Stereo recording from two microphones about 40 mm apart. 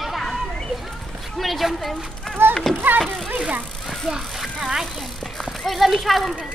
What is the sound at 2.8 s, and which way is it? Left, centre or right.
Speech, right.